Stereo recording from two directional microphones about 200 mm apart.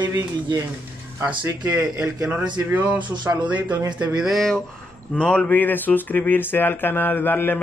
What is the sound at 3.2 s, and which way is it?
Speech, 20° right (ahead or behind).